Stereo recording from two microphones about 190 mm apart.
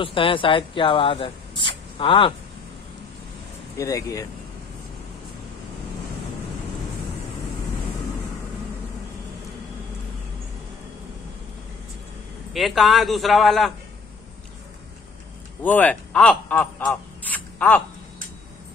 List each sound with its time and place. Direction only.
0.0 s speech: 25° left (ahead or behind)
3.7 s speech: 15° left (ahead or behind)
12.5 s a man's voice: centre (ahead or behind)
15.6 s speech: 10° left (ahead or behind)